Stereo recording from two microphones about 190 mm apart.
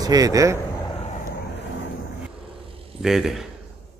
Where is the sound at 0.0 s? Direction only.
20° right (ahead or behind).